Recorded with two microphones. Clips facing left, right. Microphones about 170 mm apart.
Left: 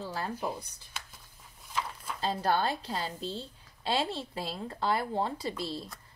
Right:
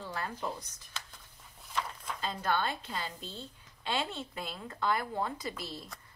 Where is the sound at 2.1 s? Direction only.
35° left (ahead or behind).